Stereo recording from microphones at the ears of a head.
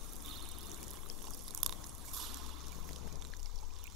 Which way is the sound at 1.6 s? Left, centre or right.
Right.